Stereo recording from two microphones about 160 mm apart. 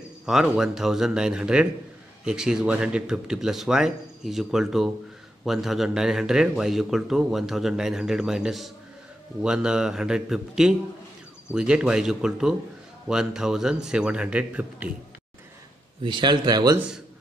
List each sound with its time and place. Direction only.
0.2 s a man's voice: 5° right (ahead or behind)
16.0 s a man's voice: 30° right (ahead or behind)
16.7 s a man's voice: 5° right (ahead or behind)